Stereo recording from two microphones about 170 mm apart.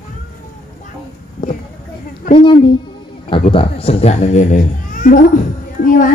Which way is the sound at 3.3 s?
30° left (ahead or behind).